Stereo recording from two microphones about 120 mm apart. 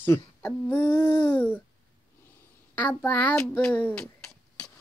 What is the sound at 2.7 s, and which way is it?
A child's voice, 15° left (ahead or behind).